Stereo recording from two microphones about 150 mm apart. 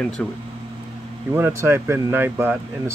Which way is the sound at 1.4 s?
15° right (ahead or behind).